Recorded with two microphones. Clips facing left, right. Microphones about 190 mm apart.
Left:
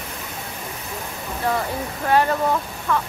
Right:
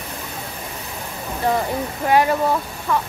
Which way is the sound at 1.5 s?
20° right (ahead or behind).